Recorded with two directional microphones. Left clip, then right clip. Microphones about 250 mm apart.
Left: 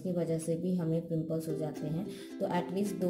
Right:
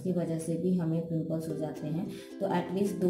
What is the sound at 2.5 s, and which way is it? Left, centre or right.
Speech, left.